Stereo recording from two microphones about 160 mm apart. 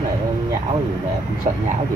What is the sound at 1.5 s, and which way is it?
Speech, 50° right (ahead or behind).